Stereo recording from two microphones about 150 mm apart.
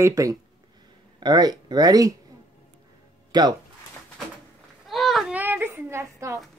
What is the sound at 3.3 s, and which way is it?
Speech, 30° right (ahead or behind).